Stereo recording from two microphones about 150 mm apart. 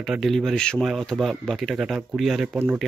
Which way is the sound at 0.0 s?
Centre (ahead or behind).